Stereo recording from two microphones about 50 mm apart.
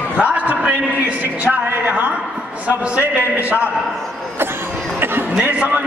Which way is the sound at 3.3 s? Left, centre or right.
Right.